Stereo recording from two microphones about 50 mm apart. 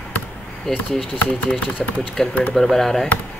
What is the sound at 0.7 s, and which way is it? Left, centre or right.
Speech, centre.